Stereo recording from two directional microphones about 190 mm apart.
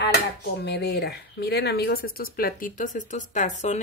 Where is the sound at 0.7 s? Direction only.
60° left (ahead or behind).